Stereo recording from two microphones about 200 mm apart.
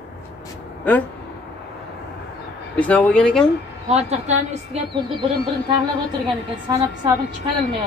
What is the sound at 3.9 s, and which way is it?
Speech, 35° right (ahead or behind).